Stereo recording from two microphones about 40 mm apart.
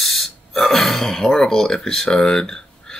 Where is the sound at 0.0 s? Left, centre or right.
Centre.